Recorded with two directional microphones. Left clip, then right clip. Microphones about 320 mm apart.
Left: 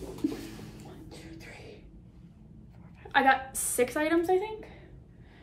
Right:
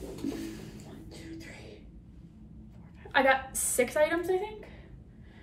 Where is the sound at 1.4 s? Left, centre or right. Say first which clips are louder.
Even; centre.